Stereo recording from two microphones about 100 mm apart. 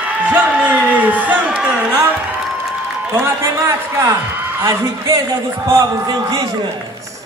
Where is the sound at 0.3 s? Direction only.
15° right (ahead or behind).